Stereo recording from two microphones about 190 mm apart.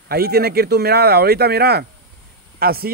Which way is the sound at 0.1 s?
55° right (ahead or behind).